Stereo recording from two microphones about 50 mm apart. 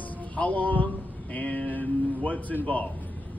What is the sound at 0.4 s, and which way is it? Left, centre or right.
Speech, left.